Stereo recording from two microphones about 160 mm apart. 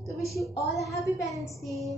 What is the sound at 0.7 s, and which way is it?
Speech, 20° left (ahead or behind).